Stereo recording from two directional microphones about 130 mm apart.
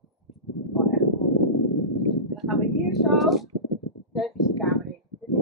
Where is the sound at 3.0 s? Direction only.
Centre (ahead or behind).